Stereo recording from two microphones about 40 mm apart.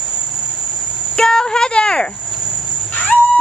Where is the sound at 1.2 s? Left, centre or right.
Centre.